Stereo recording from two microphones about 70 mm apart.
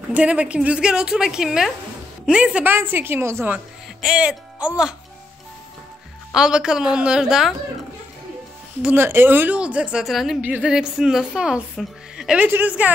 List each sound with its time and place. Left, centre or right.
0.1 s a woman's voice: centre
2.6 s a woman's voice: right
4.0 s speech: centre
6.3 s a woman's voice: centre
8.9 s a woman's voice: right
9.6 s a woman's voice: centre
10.0 s a woman's voice: centre
12.4 s a woman's voice: right